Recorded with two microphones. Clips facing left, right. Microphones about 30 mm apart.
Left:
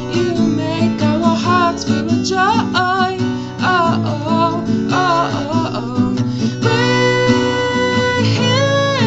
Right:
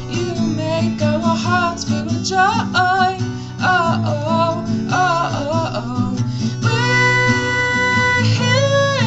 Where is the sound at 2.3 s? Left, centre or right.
Centre.